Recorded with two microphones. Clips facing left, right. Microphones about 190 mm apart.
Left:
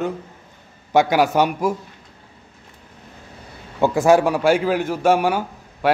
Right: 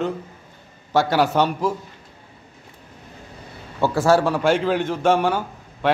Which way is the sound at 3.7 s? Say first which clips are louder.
Left 3 dB; 15° left (ahead or behind).